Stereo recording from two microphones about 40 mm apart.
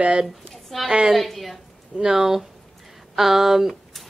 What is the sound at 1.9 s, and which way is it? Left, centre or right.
A woman's voice, centre.